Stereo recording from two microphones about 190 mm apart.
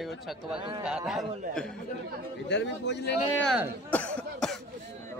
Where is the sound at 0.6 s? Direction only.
25° right (ahead or behind).